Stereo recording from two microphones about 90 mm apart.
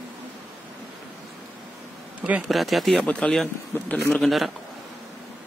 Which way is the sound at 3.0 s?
10° left (ahead or behind).